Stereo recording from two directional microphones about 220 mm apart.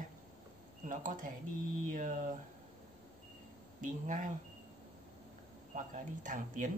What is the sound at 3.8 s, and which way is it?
Speech, 35° right (ahead or behind).